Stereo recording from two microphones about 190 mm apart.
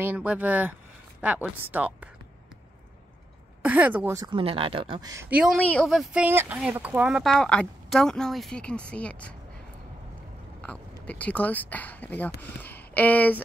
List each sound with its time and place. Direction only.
0.0 s a woman's voice: 10° right (ahead or behind)
3.6 s a woman's voice: 5° right (ahead or behind)
10.6 s speech: 5° left (ahead or behind)